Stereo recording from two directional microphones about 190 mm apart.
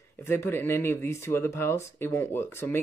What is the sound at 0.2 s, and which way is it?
Speech, 10° left (ahead or behind).